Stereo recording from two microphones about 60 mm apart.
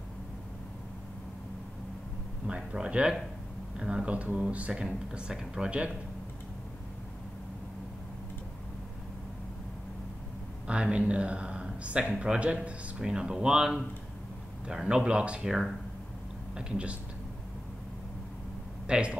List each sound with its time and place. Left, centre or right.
2.4 s speech: centre
10.7 s speech: centre
18.9 s speech: centre